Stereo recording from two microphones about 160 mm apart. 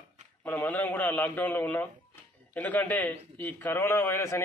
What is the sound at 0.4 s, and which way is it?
Speech, 10° left (ahead or behind).